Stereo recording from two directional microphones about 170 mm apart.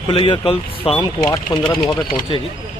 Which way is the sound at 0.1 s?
30° left (ahead or behind).